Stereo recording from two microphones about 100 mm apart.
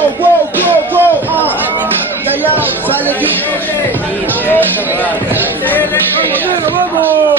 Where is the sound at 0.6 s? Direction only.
20° right (ahead or behind).